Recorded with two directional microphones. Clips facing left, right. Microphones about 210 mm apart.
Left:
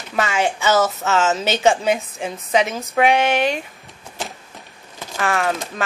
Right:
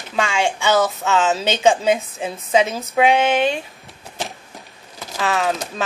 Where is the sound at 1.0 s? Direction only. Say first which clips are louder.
Even; 15° right (ahead or behind).